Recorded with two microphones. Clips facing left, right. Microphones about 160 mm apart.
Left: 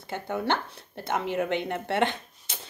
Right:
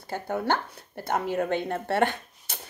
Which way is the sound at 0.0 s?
20° left (ahead or behind).